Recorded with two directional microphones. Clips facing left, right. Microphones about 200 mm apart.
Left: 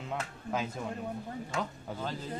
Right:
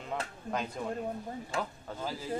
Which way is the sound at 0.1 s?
Centre (ahead or behind).